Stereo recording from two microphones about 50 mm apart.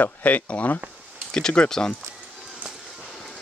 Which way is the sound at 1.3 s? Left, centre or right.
Centre.